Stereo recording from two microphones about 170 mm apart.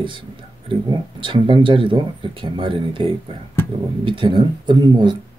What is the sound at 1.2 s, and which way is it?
Speech, 30° right (ahead or behind).